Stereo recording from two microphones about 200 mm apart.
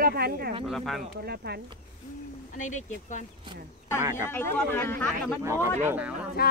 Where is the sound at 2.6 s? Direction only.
40° left (ahead or behind).